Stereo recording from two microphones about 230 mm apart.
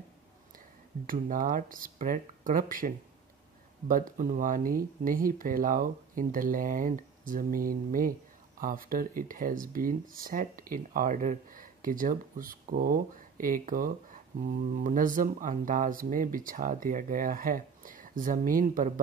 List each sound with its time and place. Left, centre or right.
1.0 s speech: right